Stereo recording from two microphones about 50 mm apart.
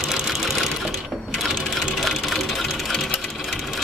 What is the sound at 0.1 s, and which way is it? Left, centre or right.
Sewing machine, centre.